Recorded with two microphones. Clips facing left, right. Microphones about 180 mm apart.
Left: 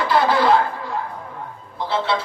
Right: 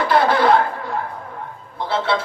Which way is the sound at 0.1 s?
50° right (ahead or behind).